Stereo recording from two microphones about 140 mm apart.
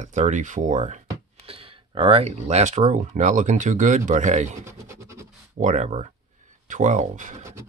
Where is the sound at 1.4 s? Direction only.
40° right (ahead or behind); by 4.6 s 60° right (ahead or behind).